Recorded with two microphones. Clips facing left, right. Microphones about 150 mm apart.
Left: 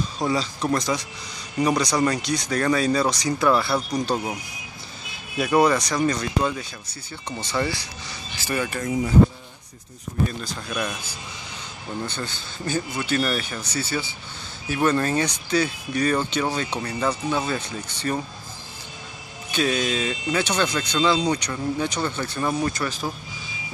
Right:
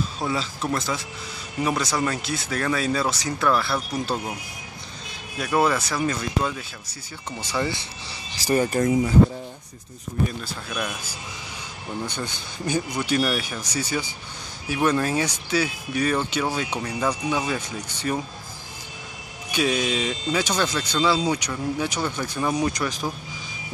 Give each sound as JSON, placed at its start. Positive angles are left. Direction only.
{"t": 0.3, "sound": "speech", "side_deg": 0}
{"t": 3.3, "sound": "speech", "side_deg": 5}
{"t": 5.4, "sound": "speech", "side_deg": 0}
{"t": 7.7, "sound": "speech", "side_deg": -30}
{"t": 10.4, "sound": "speech", "side_deg": -5}
{"t": 19.5, "sound": "speech", "side_deg": -10}